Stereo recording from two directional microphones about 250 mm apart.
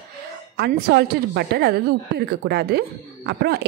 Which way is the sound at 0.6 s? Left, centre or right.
Right.